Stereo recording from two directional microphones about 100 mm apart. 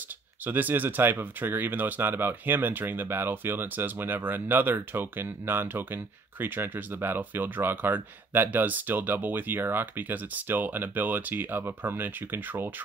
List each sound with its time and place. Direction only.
0.5 s speech: 20° right (ahead or behind)